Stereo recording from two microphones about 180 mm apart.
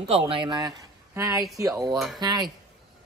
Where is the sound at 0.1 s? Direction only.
30° right (ahead or behind).